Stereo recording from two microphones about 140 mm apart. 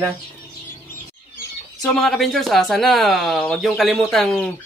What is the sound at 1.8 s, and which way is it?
Speech, 5° left (ahead or behind).